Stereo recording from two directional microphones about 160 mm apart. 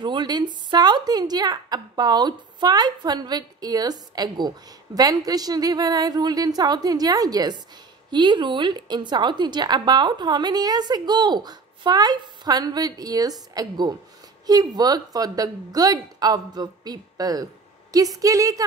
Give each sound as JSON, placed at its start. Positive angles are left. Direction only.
{"t": 0.0, "sound": "a woman's voice", "side_deg": -30}